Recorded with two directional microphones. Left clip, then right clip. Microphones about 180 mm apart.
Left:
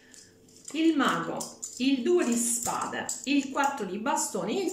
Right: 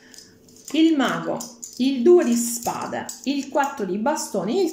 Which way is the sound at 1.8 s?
40° right (ahead or behind).